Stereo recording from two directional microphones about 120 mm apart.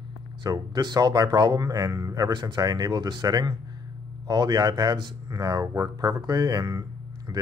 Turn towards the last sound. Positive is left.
turn(degrees=-30)  # may be behind; listen again after turning